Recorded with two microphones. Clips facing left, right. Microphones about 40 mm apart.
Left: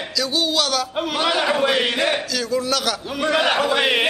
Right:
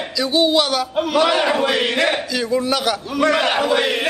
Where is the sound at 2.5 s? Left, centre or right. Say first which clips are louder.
Right 3 dB; centre.